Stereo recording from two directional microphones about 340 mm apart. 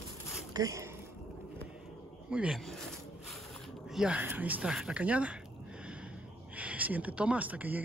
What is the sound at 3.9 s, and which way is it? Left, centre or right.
Speech, centre.